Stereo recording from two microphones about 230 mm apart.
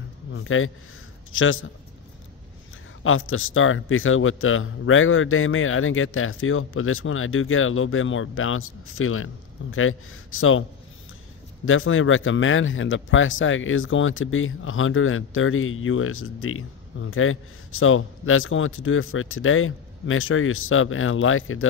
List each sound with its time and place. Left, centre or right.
0.3 s a man's voice: left
3.0 s speech: left
11.6 s speech: left